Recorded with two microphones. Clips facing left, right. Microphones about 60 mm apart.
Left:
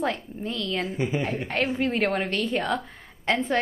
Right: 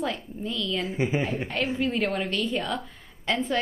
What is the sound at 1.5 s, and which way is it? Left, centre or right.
A woman's voice, left.